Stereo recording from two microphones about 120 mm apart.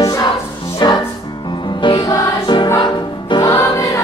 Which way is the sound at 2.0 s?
40° left (ahead or behind).